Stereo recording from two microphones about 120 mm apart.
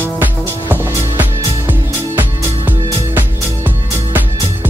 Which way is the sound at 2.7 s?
15° right (ahead or behind).